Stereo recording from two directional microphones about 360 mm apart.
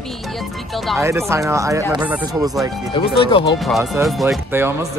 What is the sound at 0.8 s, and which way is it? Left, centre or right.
Speech, centre.